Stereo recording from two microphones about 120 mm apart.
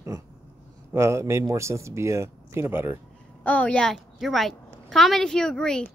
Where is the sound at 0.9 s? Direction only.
25° right (ahead or behind).